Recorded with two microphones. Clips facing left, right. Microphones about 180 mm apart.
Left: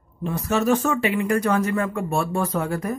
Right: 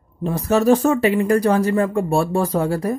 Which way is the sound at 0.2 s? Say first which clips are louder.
Right 5 dB; 35° right (ahead or behind).